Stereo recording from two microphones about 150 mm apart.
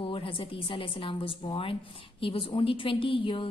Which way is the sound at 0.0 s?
35° left (ahead or behind).